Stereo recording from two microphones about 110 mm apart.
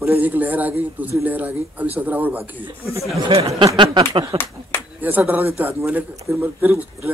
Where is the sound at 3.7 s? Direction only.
45° right (ahead or behind).